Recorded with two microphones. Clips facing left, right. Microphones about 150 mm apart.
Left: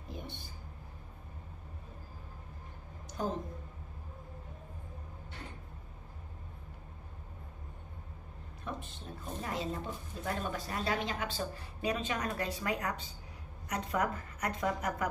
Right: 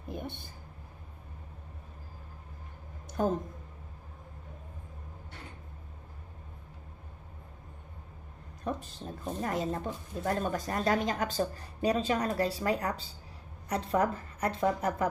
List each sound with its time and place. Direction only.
0.1 s a sound: 55° right (ahead or behind)
3.2 s speech: 50° right (ahead or behind)
8.6 s a woman's voice: 40° right (ahead or behind)